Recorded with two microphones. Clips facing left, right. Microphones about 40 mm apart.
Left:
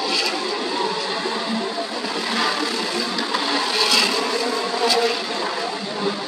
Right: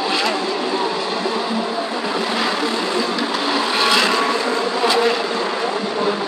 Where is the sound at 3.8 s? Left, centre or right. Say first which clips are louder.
Right 5 dB; right.